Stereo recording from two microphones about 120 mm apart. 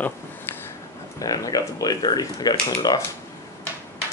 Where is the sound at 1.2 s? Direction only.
30° left (ahead or behind).